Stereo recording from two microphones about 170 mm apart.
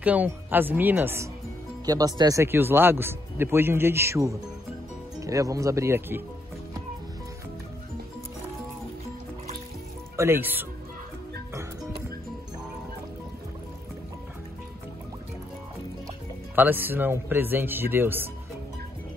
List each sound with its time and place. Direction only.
0.0 s speech: 10° right (ahead or behind)
10.1 s speech: 15° right (ahead or behind)
16.5 s speech: 10° right (ahead or behind)